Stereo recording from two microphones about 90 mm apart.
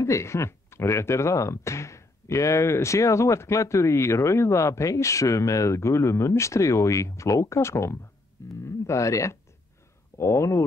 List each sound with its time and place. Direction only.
0.0 s speech: 35° left (ahead or behind)